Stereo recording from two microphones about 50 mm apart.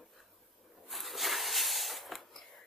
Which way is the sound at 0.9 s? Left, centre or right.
Centre.